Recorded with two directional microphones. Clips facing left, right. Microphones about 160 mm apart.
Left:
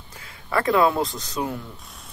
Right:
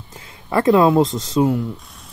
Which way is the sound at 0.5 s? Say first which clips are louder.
Right 6 dB; 20° right (ahead or behind).